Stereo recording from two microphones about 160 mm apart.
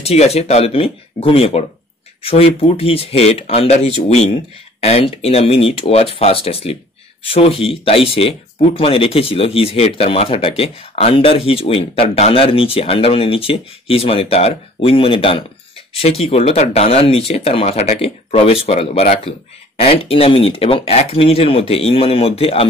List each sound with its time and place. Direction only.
0.0 s speech: 40° left (ahead or behind)